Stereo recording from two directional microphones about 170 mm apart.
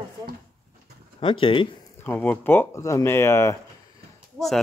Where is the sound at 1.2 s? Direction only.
30° left (ahead or behind).